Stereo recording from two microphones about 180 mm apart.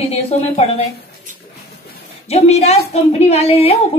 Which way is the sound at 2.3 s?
35° left (ahead or behind).